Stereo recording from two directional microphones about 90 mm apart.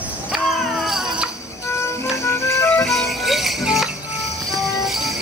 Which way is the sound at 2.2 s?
30° left (ahead or behind).